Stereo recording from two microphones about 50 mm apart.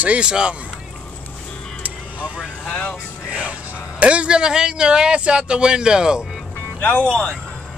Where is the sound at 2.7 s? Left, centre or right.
Left.